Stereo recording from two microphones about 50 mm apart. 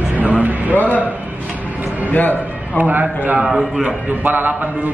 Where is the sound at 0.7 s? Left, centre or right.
Left.